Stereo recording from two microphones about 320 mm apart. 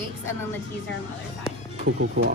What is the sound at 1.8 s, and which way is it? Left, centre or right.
Speech, right.